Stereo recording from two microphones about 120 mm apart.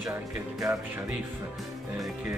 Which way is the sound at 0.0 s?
25° right (ahead or behind).